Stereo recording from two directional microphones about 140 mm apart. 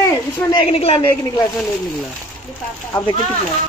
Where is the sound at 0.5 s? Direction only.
45° left (ahead or behind).